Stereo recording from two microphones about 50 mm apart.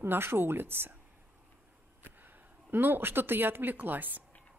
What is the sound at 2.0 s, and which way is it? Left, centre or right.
Speech, right.